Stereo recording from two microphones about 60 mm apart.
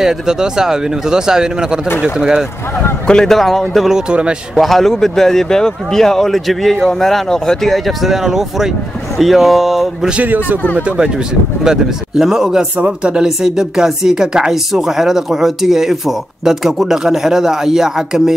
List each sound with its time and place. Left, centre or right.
0.0 s speech: centre
3.1 s speech: centre
3.9 s speech: centre
4.6 s speech: centre
10.2 s speech: right
11.6 s speech: centre